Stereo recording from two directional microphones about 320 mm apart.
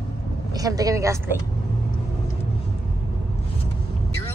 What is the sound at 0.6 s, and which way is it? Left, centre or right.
Speech, centre.